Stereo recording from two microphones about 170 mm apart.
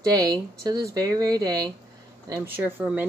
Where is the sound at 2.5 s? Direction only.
10° right (ahead or behind).